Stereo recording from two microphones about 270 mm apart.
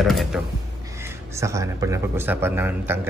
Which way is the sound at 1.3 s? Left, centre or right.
Centre.